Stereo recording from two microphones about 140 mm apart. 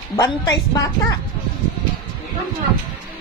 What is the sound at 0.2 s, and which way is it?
Speech, 25° left (ahead or behind).